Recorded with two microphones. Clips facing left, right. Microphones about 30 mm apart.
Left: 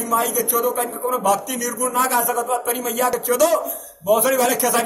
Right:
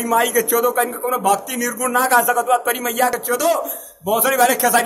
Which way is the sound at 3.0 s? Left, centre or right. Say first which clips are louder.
Left 2 dB; centre.